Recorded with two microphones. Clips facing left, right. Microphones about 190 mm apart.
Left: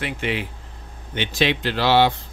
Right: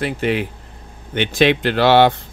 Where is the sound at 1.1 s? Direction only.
55° right (ahead or behind).